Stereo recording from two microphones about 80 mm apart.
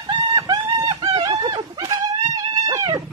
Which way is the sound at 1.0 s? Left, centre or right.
Right.